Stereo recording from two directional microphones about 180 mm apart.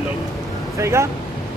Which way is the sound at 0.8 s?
15° right (ahead or behind).